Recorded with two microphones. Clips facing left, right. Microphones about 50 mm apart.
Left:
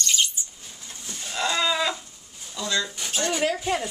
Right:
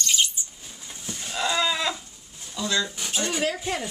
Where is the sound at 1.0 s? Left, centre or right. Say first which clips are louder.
Even; centre.